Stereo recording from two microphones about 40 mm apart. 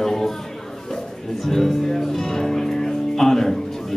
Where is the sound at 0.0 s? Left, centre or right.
Centre.